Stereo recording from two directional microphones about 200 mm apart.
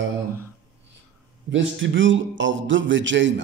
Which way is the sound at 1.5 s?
70° right (ahead or behind).